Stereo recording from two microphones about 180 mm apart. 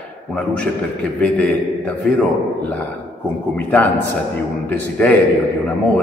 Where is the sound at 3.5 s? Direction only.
10° left (ahead or behind).